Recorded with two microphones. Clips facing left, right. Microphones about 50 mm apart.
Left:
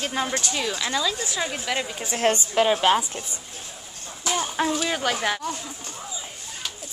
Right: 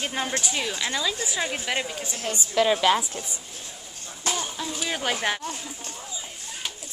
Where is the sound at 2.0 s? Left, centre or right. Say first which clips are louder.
Left 9 dB; left.